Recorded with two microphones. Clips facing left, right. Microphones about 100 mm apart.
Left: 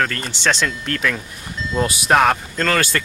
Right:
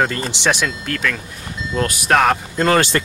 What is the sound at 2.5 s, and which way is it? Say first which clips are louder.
Speech: right 4 dB; 25° right (ahead or behind).